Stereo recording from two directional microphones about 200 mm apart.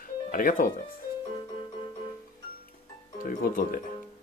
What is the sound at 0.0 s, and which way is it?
Music, 45° left (ahead or behind).